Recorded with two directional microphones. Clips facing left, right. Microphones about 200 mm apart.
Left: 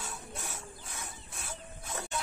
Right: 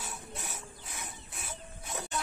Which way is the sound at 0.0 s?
20° right (ahead or behind).